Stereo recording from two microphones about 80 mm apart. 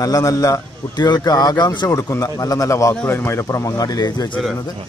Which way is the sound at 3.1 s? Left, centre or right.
Left.